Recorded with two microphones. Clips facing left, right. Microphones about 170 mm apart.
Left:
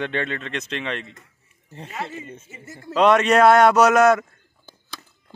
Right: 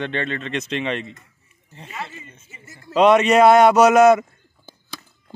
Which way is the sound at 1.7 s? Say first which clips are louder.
Left 2 dB; 45° left (ahead or behind).